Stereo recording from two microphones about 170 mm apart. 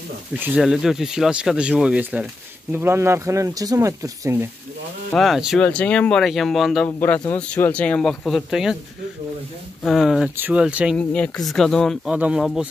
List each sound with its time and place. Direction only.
0.4 s speech: 5° right (ahead or behind)
5.1 s speech: centre (ahead or behind)
9.8 s speech: centre (ahead or behind)
11.0 s speech: 10° left (ahead or behind)